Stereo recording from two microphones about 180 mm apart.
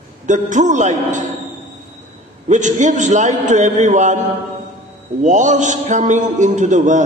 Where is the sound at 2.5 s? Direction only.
45° right (ahead or behind).